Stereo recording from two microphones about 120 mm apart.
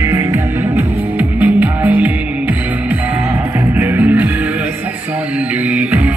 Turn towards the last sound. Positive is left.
turn(degrees=-10)  # may be behind; listen again after turning